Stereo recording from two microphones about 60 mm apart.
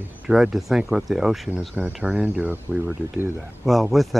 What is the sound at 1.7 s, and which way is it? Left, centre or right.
Speech, right.